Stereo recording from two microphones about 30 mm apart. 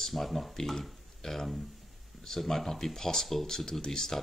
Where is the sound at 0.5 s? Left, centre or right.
Centre.